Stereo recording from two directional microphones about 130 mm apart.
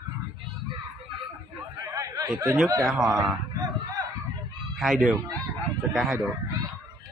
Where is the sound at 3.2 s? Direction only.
30° right (ahead or behind).